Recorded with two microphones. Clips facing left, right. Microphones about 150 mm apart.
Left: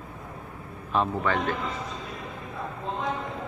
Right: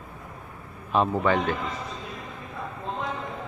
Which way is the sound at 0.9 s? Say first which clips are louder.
Right 3 dB; 15° right (ahead or behind).